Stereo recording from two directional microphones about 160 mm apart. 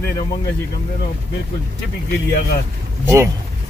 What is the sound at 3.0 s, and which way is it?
Speech, 20° right (ahead or behind).